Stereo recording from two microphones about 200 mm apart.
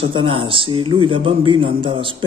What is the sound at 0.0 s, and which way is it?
A man's voice, 25° right (ahead or behind).